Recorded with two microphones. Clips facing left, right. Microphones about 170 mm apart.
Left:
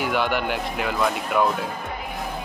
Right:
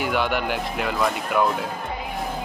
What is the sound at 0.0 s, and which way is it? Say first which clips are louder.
Speech: even; centre (ahead or behind).